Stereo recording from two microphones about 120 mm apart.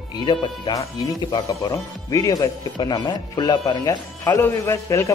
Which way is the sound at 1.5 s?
30° left (ahead or behind).